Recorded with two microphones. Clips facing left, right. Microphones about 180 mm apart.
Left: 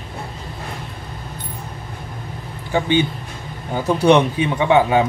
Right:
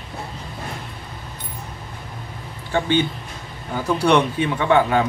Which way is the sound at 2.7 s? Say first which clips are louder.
Left 2 dB; 15° left (ahead or behind).